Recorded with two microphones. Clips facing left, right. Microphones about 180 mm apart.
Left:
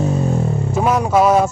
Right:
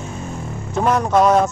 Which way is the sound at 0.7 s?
5° left (ahead or behind).